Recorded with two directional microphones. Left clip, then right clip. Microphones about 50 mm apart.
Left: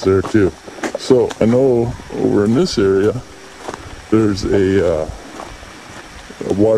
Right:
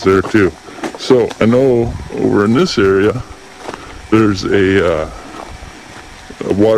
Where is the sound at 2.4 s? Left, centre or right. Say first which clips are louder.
Right 3 dB; right.